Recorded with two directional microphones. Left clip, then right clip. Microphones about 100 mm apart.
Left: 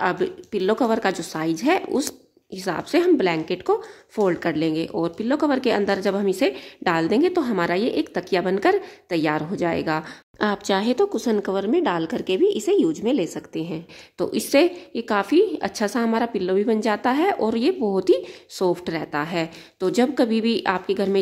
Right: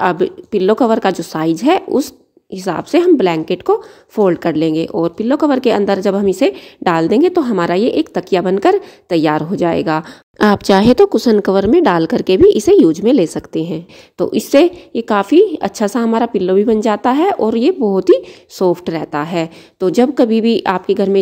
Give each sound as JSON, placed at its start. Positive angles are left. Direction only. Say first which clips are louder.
{"t": 0.0, "sound": "speech", "louder": "right 8 dB", "side_deg": -40}
{"t": 10.4, "sound": "a woman's voice", "louder": "right 11 dB", "side_deg": -65}
{"t": 14.1, "sound": "speech", "louder": "right 8 dB", "side_deg": -30}